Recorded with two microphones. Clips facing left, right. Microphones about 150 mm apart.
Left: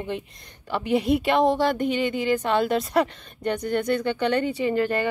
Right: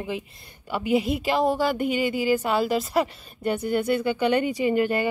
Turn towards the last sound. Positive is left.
turn(degrees=-10)  # may be behind; listen again after turning